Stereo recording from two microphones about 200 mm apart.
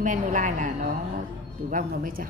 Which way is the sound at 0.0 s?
40° right (ahead or behind).